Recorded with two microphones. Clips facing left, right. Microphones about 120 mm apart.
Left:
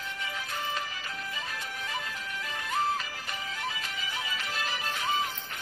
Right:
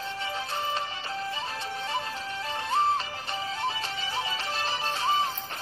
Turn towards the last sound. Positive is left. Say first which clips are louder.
# right 4 dB
turn(degrees=-30)  # may be behind; listen again after turning